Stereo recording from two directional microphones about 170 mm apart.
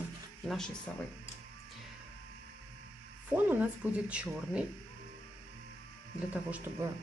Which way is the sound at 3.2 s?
10° right (ahead or behind).